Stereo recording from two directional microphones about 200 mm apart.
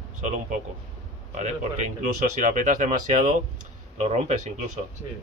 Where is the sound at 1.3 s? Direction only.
35° right (ahead or behind).